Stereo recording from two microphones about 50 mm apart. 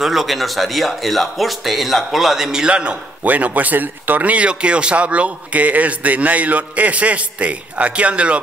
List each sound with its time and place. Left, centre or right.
0.0 s speech: centre
2.6 s speech: right
3.3 s speech: right